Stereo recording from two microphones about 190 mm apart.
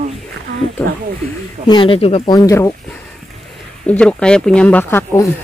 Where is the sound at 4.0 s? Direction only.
5° left (ahead or behind).